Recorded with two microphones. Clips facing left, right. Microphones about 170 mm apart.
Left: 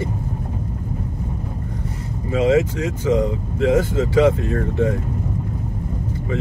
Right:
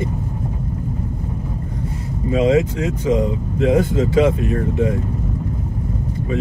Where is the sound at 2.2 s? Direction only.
20° right (ahead or behind).